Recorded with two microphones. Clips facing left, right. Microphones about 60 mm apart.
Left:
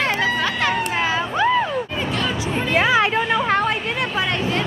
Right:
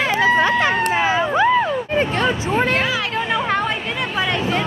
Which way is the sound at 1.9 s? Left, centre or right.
Right.